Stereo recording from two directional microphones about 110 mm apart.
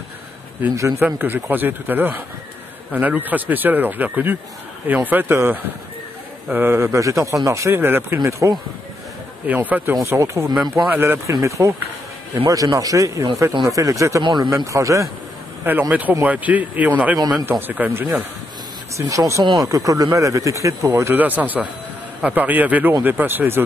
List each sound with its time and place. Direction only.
0.7 s speech: 25° right (ahead or behind)
1.0 s speech: 15° right (ahead or behind)
9.5 s speech: 15° right (ahead or behind)
10.5 s speech: centre (ahead or behind)
10.9 s speech: 20° right (ahead or behind)
14.2 s speech: 45° right (ahead or behind)
14.7 s speech: 30° right (ahead or behind)
15.9 s speech: 15° right (ahead or behind)
18.9 s speech: 30° right (ahead or behind)
19.4 s speech: 40° right (ahead or behind); by 23.6 s 20° right (ahead or behind)